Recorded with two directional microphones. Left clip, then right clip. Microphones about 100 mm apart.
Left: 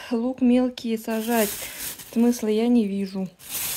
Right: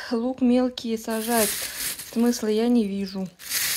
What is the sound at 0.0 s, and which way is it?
Speech, 20° left (ahead or behind).